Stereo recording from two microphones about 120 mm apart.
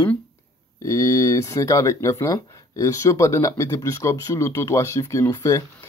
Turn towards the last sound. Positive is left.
turn(degrees=25)  # may be behind; listen again after turning